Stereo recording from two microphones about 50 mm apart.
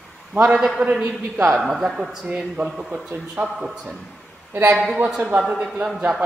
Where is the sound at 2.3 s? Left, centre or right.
Centre.